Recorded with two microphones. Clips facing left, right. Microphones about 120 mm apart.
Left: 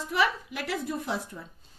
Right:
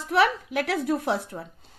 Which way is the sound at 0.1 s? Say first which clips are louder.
Right 6 dB; 70° right (ahead or behind).